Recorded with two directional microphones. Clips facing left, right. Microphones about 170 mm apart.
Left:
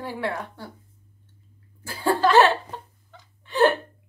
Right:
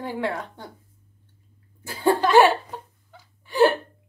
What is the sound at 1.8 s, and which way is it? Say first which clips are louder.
Speech: right 1 dB; 20° right (ahead or behind).